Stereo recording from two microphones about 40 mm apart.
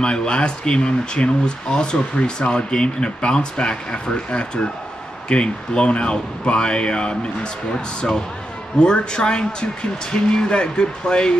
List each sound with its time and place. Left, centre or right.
0.0 s speech: left